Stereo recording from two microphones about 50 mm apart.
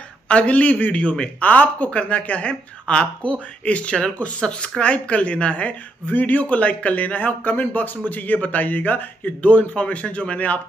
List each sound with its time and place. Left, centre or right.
0.3 s a woman's voice: left